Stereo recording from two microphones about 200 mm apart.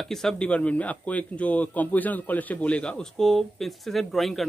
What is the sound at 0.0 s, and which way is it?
A man's voice, centre (ahead or behind).